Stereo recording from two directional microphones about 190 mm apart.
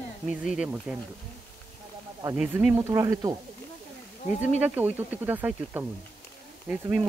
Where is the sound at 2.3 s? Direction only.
5° right (ahead or behind).